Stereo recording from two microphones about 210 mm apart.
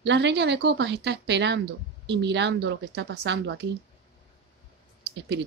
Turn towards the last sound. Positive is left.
turn(degrees=-55)  # may be behind; listen again after turning